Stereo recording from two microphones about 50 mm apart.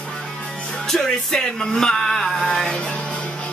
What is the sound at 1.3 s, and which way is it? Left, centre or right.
Music, centre.